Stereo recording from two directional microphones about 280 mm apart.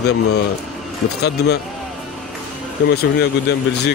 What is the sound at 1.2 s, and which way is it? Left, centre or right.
Speech, left.